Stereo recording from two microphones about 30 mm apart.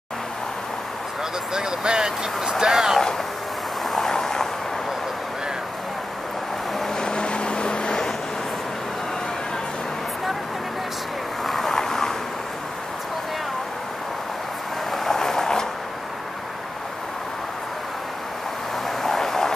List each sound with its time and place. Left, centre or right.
1.5 s speech: right
3.9 s vehicle: centre
7.0 s vehicle: left
11.4 s vehicle: centre
15.0 s a sound: centre
18.9 s vehicle: centre